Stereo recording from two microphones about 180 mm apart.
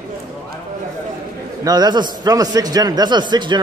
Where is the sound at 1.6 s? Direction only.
20° right (ahead or behind).